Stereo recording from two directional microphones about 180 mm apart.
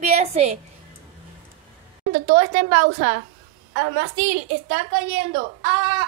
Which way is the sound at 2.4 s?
35° right (ahead or behind).